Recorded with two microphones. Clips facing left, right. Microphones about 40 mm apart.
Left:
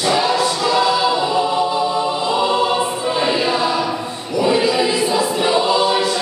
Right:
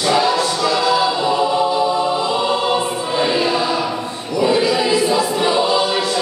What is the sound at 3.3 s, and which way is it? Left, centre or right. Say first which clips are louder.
Choir: even; centre.